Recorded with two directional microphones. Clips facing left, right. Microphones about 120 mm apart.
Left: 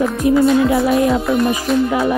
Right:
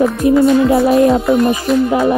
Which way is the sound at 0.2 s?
35° right (ahead or behind).